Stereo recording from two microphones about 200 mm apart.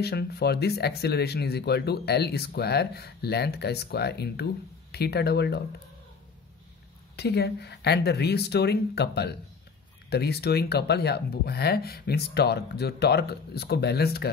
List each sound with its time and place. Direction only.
0.0 s speech: 55° left (ahead or behind)
7.2 s speech: 55° left (ahead or behind)